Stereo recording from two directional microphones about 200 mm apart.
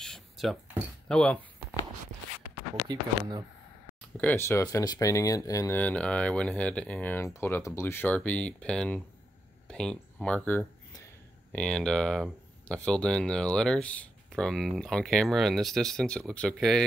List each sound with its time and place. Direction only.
0.0 s a sound: centre (ahead or behind)
2.9 s speech: 20° right (ahead or behind)
4.2 s speech: 10° left (ahead or behind)